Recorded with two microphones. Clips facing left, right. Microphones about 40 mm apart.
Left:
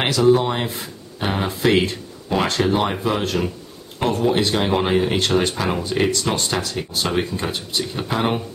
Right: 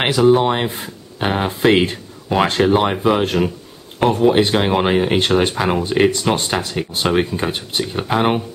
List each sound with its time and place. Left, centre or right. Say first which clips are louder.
0.0 s speech: right 3 dB; right